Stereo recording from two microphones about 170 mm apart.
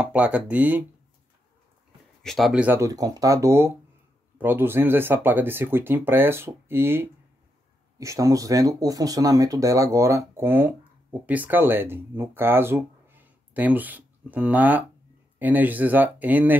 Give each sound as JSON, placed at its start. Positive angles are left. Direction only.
{"t": 0.0, "sound": "speech", "side_deg": -5}
{"t": 2.2, "sound": "speech", "side_deg": 0}